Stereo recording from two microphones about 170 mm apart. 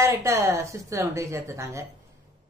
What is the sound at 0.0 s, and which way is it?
Speech, 15° right (ahead or behind).